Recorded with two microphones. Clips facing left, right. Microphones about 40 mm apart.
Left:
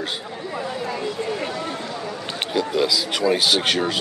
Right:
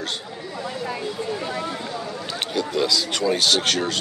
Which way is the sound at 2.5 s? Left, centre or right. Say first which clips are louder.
Left 2 dB; centre.